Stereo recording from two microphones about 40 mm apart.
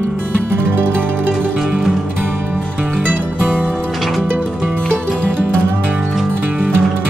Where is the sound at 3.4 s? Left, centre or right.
Right.